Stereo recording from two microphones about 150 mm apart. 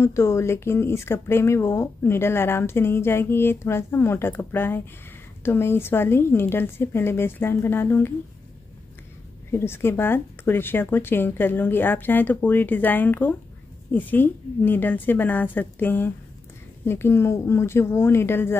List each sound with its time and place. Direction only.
0.0 s speech: 20° left (ahead or behind)
9.5 s speech: 15° left (ahead or behind)